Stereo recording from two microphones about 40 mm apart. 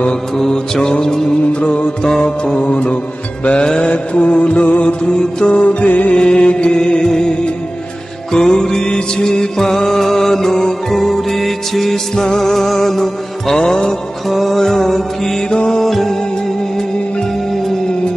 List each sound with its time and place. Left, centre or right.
0.4 s mantra: centre
1.5 s music: left
3.4 s music: left
3.9 s music: left
5.9 s music: left
6.1 s music: left
8.3 s mantra: centre
8.8 s music: centre
13.6 s mantra: centre
14.3 s music: centre
14.6 s music: centre
15.5 s music: left
15.8 s music: centre